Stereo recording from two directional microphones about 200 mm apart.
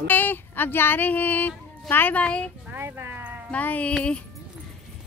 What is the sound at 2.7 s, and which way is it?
Speech, 10° right (ahead or behind).